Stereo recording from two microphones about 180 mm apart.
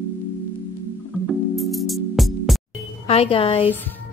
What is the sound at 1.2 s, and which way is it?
Music, centre (ahead or behind).